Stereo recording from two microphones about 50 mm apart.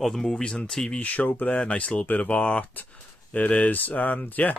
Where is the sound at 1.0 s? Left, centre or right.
Left.